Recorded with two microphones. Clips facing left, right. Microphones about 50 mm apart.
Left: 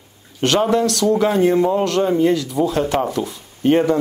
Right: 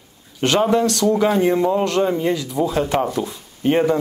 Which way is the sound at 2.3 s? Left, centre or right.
Centre.